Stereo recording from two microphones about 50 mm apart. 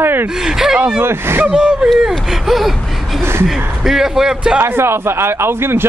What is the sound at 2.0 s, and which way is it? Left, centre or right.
Speech, centre.